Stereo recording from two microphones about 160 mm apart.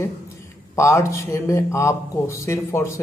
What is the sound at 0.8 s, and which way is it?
A man's voice, 20° left (ahead or behind).